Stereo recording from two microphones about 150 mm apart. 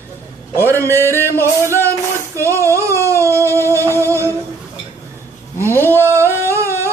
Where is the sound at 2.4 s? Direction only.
15° left (ahead or behind).